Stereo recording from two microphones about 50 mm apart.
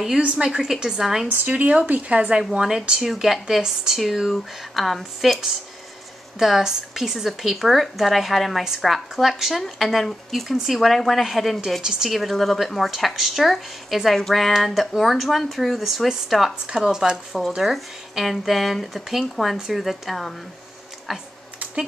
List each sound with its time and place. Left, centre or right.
0.2 s a woman's voice: centre
1.3 s speech: right; by 5.4 s centre
6.4 s a woman's voice: centre
11.8 s speech: centre
12.1 s a woman's voice: centre